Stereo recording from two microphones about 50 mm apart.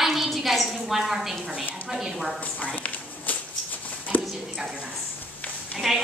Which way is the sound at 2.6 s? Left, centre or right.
Left.